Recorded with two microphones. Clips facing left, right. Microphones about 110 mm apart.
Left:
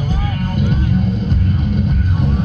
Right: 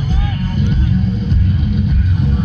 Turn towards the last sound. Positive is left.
turn(degrees=50)  # may be behind; listen again after turning